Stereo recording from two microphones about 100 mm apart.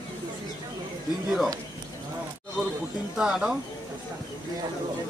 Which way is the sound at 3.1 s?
5° right (ahead or behind).